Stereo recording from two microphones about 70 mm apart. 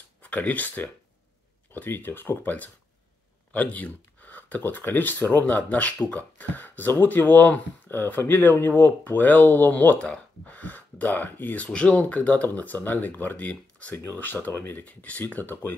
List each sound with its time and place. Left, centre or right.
0.2 s speech: left